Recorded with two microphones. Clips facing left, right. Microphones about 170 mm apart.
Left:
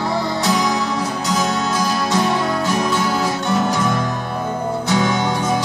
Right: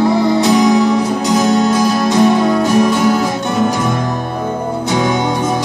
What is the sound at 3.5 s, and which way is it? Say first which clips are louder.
Music: right 3 dB; 15° right (ahead or behind).